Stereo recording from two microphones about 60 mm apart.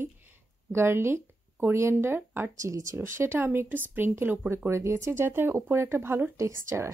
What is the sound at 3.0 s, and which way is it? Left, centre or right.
A woman's voice, right.